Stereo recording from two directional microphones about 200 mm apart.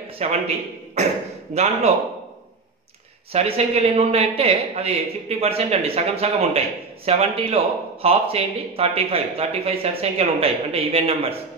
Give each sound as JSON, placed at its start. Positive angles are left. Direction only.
{"t": 0.2, "sound": "a man's voice", "side_deg": -35}
{"t": 3.3, "sound": "a man's voice", "side_deg": -30}